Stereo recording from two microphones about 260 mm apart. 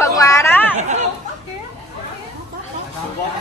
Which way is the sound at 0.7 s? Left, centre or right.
Right.